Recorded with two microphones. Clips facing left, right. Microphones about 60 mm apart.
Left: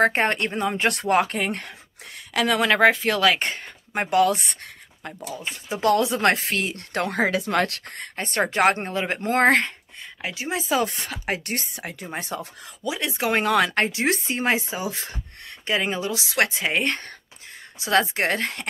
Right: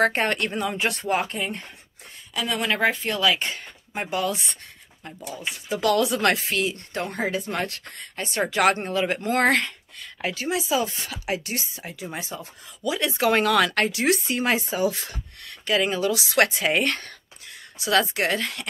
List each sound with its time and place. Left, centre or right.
0.0 s a woman's voice: left
0.8 s speech: left
2.3 s speech: left
3.3 s speech: left
5.3 s speech: left
6.3 s speech: left
10.2 s speech: centre
10.7 s speech: left
12.2 s speech: left
12.8 s speech: centre
17.7 s a woman's voice: left